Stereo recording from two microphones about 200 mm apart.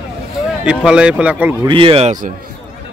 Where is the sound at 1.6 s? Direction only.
25° right (ahead or behind).